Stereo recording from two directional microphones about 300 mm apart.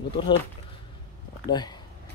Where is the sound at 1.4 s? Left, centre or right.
Centre.